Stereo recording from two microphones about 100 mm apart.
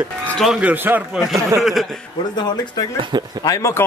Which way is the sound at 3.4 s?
30° left (ahead or behind).